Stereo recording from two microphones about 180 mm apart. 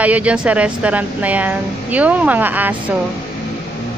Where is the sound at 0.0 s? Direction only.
5° right (ahead or behind).